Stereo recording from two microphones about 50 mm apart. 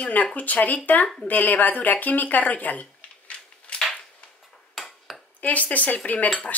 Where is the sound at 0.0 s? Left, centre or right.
Left.